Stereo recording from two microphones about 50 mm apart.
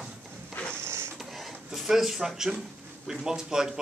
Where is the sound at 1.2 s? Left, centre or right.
Centre.